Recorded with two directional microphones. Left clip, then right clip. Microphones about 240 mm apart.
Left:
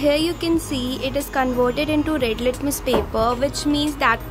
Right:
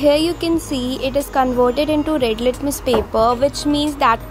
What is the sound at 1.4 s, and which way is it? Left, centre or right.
Speech, centre.